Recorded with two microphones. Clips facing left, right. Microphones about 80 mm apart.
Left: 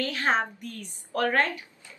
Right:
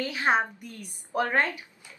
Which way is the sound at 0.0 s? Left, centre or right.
Centre.